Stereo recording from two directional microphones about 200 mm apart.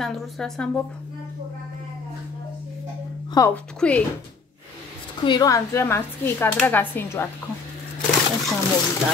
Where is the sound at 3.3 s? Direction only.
10° left (ahead or behind).